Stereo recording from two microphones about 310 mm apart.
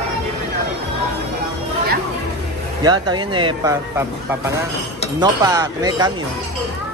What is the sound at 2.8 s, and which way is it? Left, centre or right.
Speech, centre.